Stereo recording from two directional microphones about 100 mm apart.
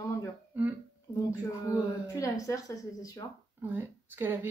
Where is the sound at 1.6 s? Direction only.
35° left (ahead or behind).